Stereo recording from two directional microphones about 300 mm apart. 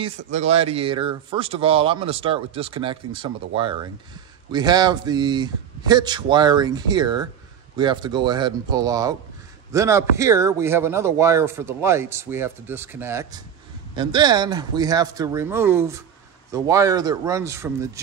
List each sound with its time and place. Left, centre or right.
0.0 s speech: right